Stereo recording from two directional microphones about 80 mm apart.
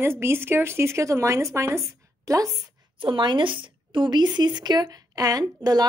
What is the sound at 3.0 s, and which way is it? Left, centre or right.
A woman's voice, right.